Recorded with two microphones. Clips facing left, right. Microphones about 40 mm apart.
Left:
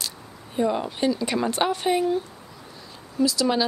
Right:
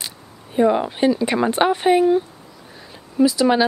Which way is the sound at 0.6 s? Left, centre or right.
Right.